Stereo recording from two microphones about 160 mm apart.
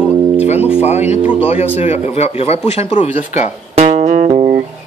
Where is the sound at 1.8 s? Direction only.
40° left (ahead or behind).